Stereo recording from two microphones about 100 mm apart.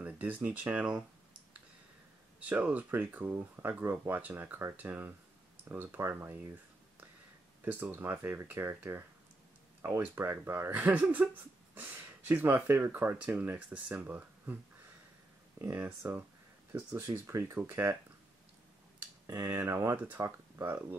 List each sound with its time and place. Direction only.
0.0 s speech: 15° right (ahead or behind)
2.4 s speech: 15° right (ahead or behind)
15.6 s speech: 25° right (ahead or behind)
17.1 s speech: 30° right (ahead or behind)
17.6 s speech: 20° right (ahead or behind)
19.2 s speech: 30° right (ahead or behind)